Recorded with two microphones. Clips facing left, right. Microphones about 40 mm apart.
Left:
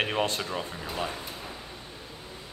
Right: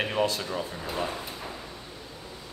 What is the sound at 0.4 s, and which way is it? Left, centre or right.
Speech, left.